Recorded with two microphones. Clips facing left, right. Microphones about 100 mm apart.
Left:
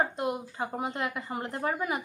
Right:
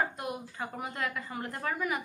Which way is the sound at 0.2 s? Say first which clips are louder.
Left 5 dB; 25° left (ahead or behind).